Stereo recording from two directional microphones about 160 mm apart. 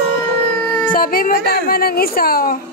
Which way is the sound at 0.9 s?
60° left (ahead or behind).